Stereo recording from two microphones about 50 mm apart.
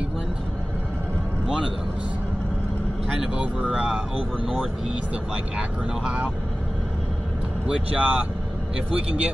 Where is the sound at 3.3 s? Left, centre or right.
Right.